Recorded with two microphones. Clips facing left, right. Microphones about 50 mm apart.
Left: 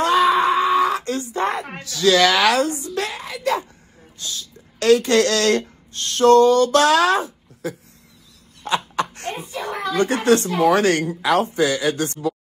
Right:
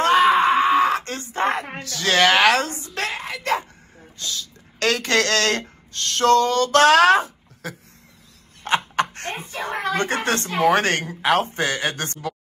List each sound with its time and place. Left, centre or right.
0.0 s wail: right
1.8 s speech: right